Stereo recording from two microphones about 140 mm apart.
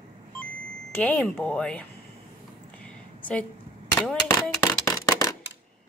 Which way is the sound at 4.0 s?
20° left (ahead or behind).